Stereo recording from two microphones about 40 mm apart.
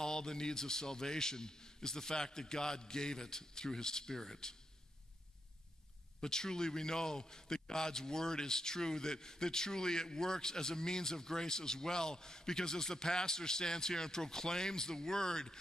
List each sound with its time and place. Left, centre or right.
0.0 s a man's voice: centre
6.2 s a man's voice: centre